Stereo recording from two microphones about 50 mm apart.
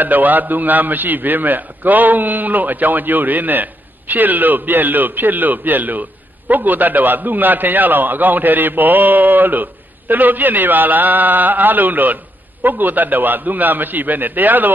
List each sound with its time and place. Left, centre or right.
0.0 s a man's voice: right